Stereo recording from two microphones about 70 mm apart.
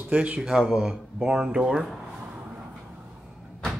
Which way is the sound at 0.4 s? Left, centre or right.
Centre.